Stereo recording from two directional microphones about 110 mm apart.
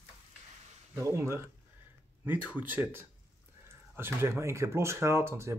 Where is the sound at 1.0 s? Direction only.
25° right (ahead or behind).